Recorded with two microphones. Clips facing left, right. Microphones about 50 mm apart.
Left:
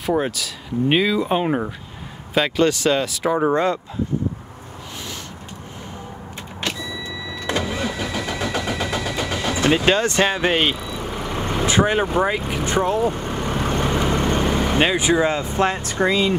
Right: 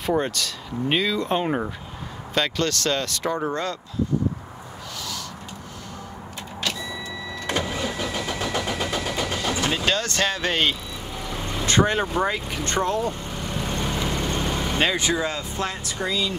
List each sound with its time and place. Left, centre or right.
0.0 s speech: centre
3.3 s speech: left
7.7 s engine: left; by 10.8 s centre
11.0 s vehicle: left
11.6 s speech: centre
13.1 s vehicle: left
14.8 s speech: centre; by 16.3 s left